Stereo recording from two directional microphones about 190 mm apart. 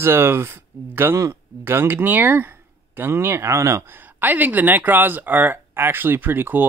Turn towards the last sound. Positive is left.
turn(degrees=-10)  # may be behind; listen again after turning